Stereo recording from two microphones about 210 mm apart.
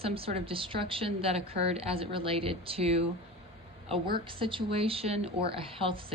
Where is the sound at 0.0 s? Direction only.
25° right (ahead or behind).